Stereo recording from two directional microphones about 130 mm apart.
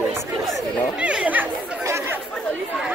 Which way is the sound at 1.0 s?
10° right (ahead or behind).